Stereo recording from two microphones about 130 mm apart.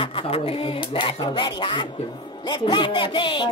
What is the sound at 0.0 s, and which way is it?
Speech, 45° left (ahead or behind).